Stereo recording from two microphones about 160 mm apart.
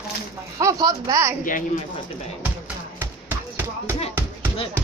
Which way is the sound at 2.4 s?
10° right (ahead or behind).